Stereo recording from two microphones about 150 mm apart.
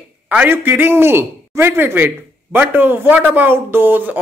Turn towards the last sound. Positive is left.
turn(degrees=-15)  # may be behind; listen again after turning